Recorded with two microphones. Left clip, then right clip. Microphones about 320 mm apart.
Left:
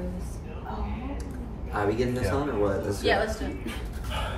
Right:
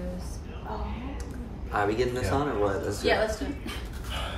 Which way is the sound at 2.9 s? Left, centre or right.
Centre.